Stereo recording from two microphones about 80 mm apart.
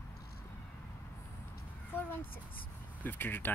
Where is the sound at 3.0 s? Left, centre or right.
Left.